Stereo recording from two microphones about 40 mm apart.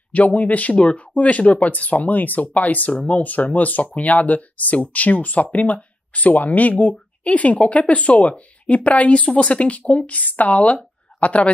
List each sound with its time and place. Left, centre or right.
0.1 s speech: left
0.7 s a woman's voice: left